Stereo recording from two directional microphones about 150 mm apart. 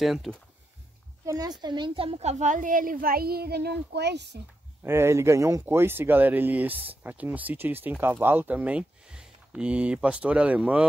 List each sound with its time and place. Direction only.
0.0 s speech: centre (ahead or behind)
1.2 s a woman's voice: 25° right (ahead or behind); by 4.3 s 90° right
4.8 s speech: 15° right (ahead or behind)